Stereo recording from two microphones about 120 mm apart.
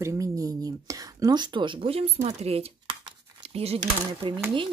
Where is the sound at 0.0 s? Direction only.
30° right (ahead or behind); by 2.1 s 55° right (ahead or behind).